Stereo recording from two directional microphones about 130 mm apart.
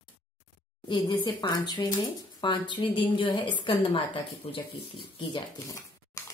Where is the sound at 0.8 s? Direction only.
35° left (ahead or behind).